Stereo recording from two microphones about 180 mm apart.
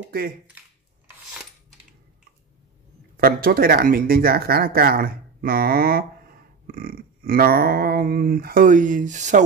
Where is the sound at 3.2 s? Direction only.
55° right (ahead or behind).